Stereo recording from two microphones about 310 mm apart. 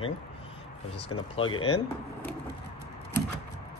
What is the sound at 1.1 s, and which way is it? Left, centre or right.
Speech, centre.